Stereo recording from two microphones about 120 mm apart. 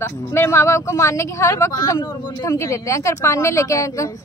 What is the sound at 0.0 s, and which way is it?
Speech, 20° left (ahead or behind).